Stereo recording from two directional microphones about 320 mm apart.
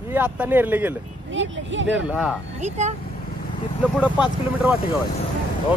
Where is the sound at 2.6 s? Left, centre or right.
Right.